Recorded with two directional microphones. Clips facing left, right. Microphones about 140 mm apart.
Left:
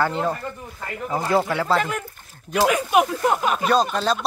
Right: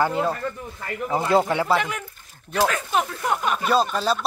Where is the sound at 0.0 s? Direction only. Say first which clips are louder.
Right 1 dB; 10° right (ahead or behind).